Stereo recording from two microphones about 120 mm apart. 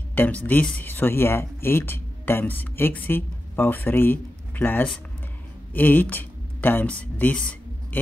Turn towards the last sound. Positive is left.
turn(degrees=10)  # may be behind; listen again after turning